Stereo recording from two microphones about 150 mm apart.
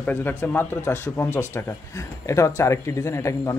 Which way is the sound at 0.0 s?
15° left (ahead or behind).